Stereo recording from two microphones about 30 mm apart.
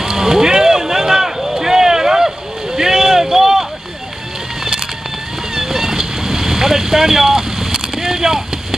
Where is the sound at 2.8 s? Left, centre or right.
Centre.